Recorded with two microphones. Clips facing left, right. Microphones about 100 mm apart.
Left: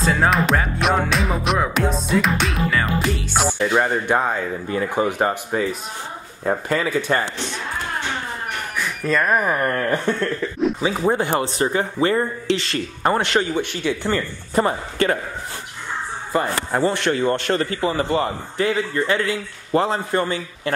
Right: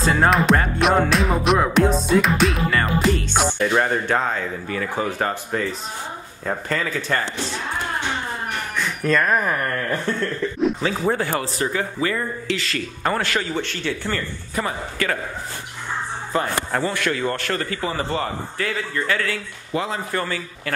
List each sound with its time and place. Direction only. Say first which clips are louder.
0.0 s music: right 1 dB; centre (ahead or behind)
4.6 s speech: left 5 dB; 20° left (ahead or behind)
8.7 s speech: right 1 dB; 5° left (ahead or behind); by 10.1 s 20° left (ahead or behind)
10.6 s music: left 1 dB; 5° left (ahead or behind)
11.1 s a man's voice: left 3 dB; 20° left (ahead or behind)
14.5 s speech: left 6 dB; 30° left (ahead or behind)
16.3 s speech: left 2 dB; 15° left (ahead or behind)
16.8 s a man's voice: left 4 dB; 30° left (ahead or behind)